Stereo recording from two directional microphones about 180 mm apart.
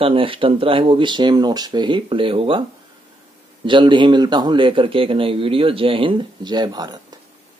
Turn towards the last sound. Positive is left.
turn(degrees=-20)  # may be behind; listen again after turning